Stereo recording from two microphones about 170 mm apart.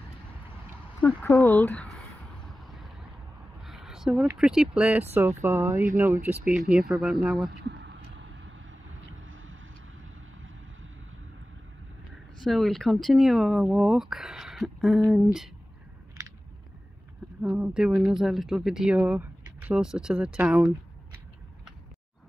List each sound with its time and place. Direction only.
1.0 s speech: 15° left (ahead or behind)
1.9 s vehicle: centre (ahead or behind)
3.6 s a sound: centre (ahead or behind)
4.4 s speech: 5° right (ahead or behind)
5.4 s speech: 20° right (ahead or behind)
6.7 s speech: centre (ahead or behind)
7.5 s a sound: 85° right
12.4 s speech: centre (ahead or behind)
17.4 s speech: 5° right (ahead or behind)